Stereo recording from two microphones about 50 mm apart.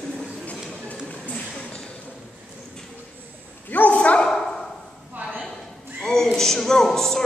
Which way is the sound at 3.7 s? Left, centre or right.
Left.